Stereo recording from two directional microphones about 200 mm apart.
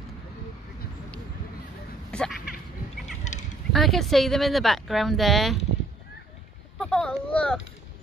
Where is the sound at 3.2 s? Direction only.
35° left (ahead or behind).